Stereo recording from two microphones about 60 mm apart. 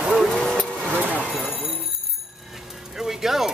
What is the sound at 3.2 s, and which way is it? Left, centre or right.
Speech, centre.